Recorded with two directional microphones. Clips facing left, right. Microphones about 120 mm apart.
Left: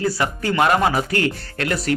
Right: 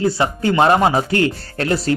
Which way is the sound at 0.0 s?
25° right (ahead or behind).